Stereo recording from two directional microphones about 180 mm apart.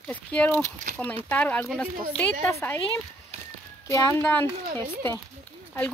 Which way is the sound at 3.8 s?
15° left (ahead or behind).